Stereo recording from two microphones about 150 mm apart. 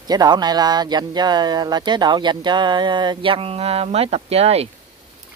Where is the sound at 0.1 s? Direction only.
30° right (ahead or behind); by 4.6 s 45° right (ahead or behind).